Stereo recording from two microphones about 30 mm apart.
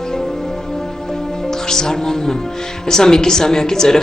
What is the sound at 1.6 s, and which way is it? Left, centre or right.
A man's voice, centre.